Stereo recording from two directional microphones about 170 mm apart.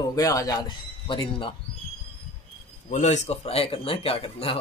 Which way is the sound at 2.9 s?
45° left (ahead or behind).